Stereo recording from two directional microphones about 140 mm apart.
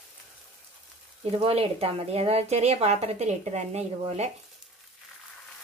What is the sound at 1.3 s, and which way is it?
Speech, 45° right (ahead or behind).